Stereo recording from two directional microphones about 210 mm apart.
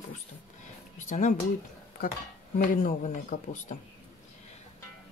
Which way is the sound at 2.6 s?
40° left (ahead or behind).